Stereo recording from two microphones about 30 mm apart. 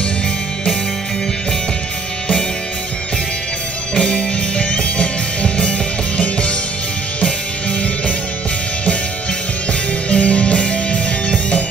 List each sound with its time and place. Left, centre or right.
3.9 s music: left
9.7 s music: left